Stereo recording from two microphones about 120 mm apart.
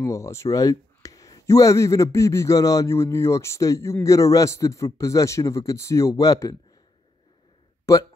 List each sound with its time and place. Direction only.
0.0 s speech: 25° left (ahead or behind)
7.8 s speech: 30° left (ahead or behind)